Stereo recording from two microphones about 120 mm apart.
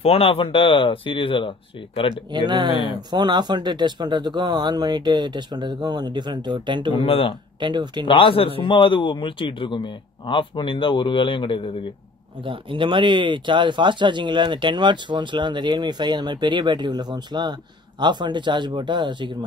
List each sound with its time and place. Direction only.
0.0 s a man's voice: 55° left (ahead or behind)
2.3 s speech: 40° right (ahead or behind)
7.1 s a man's voice: 50° left (ahead or behind)
7.6 s speech: 40° right (ahead or behind)
8.1 s a man's voice: 45° left (ahead or behind)
12.4 s speech: 45° right (ahead or behind)